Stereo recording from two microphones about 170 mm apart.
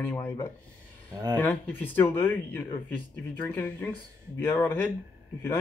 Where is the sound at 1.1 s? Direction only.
20° right (ahead or behind).